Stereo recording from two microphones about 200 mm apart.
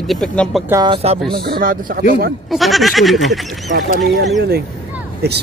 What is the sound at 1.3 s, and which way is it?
Speech, 50° right (ahead or behind).